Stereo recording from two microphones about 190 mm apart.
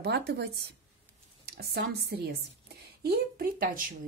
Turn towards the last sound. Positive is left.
turn(degrees=-50)  # may be behind; listen again after turning